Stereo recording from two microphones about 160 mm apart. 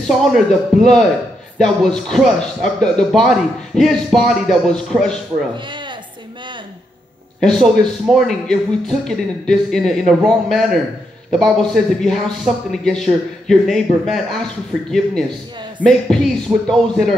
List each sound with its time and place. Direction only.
0.0 s speech: 5° left (ahead or behind)
5.7 s a sound: 30° right (ahead or behind)
7.3 s speech: 5° left (ahead or behind)
15.8 s speech: 5° left (ahead or behind)